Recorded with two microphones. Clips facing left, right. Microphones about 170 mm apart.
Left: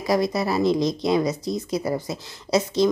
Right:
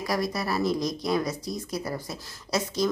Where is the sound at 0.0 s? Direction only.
20° left (ahead or behind).